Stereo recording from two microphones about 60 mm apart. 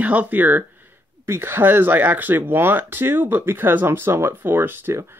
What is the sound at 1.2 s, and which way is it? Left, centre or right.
Speech, right.